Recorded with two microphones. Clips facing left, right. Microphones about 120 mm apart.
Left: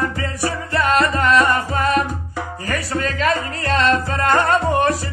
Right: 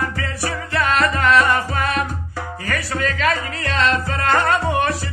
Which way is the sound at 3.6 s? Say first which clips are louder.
Left 2 dB; 45° left (ahead or behind).